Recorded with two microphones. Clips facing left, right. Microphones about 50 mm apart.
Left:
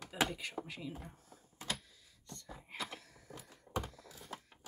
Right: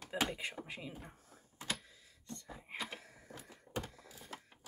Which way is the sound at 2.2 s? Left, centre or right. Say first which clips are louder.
Right 2 dB; centre.